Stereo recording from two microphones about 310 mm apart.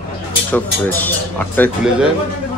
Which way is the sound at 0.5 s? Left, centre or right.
Centre.